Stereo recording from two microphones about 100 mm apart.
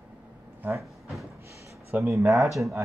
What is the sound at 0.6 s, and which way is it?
Speech, 20° right (ahead or behind).